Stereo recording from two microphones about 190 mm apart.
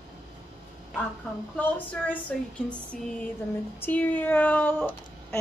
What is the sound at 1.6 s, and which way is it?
Speech, 10° left (ahead or behind).